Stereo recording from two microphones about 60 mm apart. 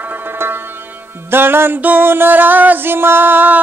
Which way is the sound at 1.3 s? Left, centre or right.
Right.